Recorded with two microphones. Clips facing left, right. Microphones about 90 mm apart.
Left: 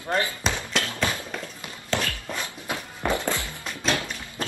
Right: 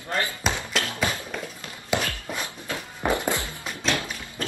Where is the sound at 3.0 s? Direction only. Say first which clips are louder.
Right 1 dB; 15° right (ahead or behind).